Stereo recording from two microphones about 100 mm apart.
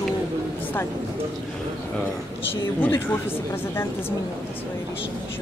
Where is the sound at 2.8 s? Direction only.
20° left (ahead or behind).